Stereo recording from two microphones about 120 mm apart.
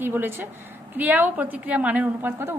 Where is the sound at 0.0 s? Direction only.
20° right (ahead or behind).